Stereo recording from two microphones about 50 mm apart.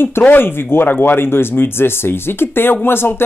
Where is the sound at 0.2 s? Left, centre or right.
Left.